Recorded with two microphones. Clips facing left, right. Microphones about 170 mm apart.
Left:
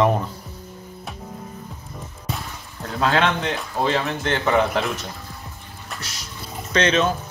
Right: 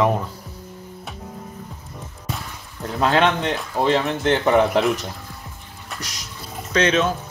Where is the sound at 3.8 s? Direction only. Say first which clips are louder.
Right 3 dB; 15° right (ahead or behind).